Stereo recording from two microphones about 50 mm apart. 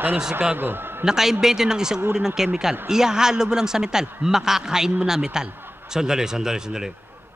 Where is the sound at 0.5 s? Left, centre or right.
Right.